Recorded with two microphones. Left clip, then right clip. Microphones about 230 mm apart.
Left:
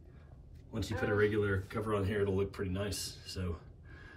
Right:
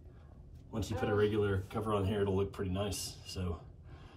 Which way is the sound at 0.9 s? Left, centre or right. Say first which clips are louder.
Left 1 dB; left.